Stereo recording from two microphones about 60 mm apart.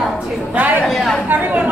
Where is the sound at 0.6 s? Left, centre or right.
Right.